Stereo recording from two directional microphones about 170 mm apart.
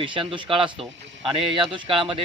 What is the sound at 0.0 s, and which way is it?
A man's voice, 30° right (ahead or behind).